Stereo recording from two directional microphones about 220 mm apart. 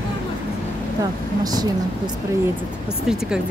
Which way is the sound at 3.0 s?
Centre (ahead or behind).